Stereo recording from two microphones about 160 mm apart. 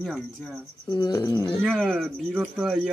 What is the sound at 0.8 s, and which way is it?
Speech, 25° left (ahead or behind).